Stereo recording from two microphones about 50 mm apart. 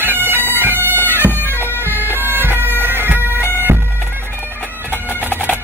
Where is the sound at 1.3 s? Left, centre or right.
Left.